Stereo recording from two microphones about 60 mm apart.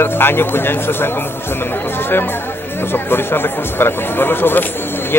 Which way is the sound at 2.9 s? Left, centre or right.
Left.